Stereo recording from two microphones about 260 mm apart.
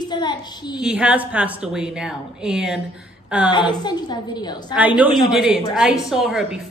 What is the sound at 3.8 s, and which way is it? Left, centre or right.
Speech, centre.